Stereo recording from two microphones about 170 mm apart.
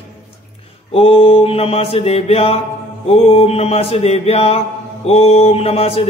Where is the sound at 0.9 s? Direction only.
35° left (ahead or behind).